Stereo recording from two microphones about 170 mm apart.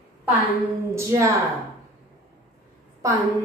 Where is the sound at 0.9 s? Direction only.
15° right (ahead or behind).